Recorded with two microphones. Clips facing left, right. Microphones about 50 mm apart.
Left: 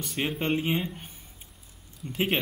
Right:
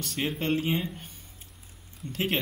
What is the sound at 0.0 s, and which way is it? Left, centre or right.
Speech, centre.